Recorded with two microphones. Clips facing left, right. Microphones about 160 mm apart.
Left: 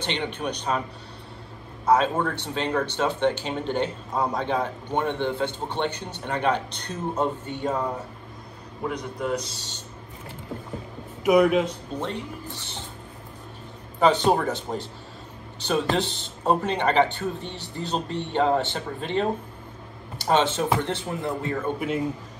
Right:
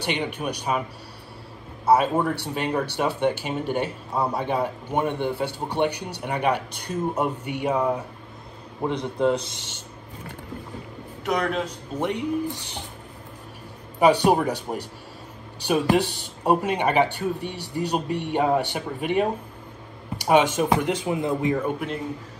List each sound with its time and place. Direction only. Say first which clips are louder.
0.0 s speech: right 1 dB; 10° right (ahead or behind)
1.9 s speech: right 2 dB; 10° right (ahead or behind)
8.8 s speech: right 6 dB; 25° right (ahead or behind)
11.2 s a man's voice: left 7 dB; 5° left (ahead or behind)
12.0 s speech: right 9 dB; 15° right (ahead or behind)
13.9 s speech: right 2 dB; 15° right (ahead or behind)